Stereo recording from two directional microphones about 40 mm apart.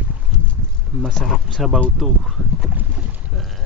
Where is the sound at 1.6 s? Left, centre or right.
Centre.